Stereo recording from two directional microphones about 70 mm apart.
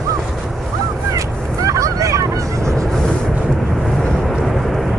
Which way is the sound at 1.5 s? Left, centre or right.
Right.